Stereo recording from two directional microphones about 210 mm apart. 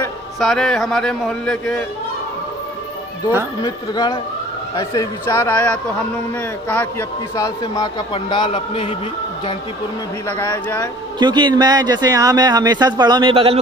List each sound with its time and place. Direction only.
0.4 s speech: centre (ahead or behind)
3.6 s a man's voice: 20° left (ahead or behind)
10.2 s a man's voice: 10° left (ahead or behind)
11.1 s speech: 20° right (ahead or behind)